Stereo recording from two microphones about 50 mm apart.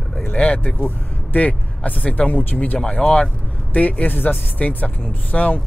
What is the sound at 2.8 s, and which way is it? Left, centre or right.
Speech, centre.